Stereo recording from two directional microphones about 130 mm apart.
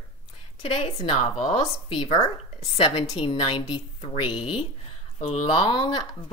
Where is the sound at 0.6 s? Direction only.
50° left (ahead or behind).